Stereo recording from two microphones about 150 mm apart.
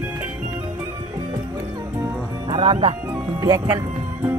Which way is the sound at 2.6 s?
45° right (ahead or behind).